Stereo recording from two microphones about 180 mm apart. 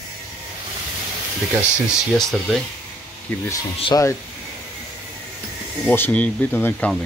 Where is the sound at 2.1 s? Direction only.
Centre (ahead or behind).